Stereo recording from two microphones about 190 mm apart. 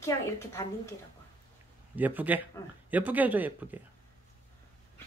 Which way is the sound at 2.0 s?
10° right (ahead or behind).